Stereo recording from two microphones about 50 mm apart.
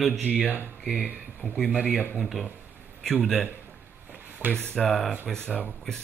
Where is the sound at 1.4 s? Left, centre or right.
Right.